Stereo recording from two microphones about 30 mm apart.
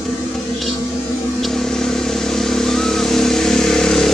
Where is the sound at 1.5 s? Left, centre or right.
Centre.